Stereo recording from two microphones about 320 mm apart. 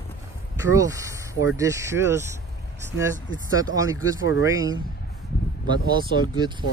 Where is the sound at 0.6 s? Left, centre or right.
Centre.